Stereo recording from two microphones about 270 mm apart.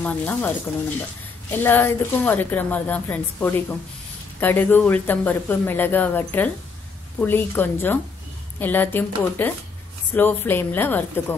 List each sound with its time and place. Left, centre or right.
0.0 s a woman's voice: centre